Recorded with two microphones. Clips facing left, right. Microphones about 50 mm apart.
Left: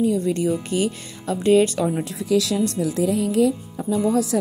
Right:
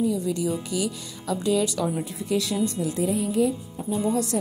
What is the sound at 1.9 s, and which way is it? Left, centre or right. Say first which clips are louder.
Speech: left 5 dB; left.